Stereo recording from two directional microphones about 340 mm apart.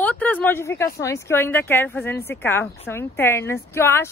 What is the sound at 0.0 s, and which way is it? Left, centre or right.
Speech, centre.